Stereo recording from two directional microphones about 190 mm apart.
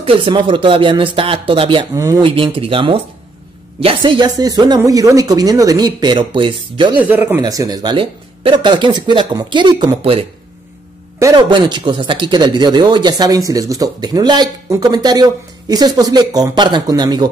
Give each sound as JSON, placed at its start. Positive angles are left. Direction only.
{"t": 0.0, "sound": "speech", "side_deg": -25}
{"t": 7.0, "sound": "speech", "side_deg": -10}